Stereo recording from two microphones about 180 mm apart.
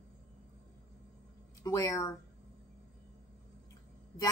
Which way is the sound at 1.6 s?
15° left (ahead or behind).